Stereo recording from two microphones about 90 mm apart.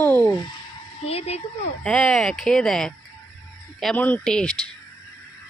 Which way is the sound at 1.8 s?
5° left (ahead or behind).